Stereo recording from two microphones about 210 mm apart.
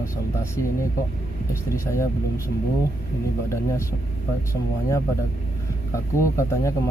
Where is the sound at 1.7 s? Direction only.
15° left (ahead or behind).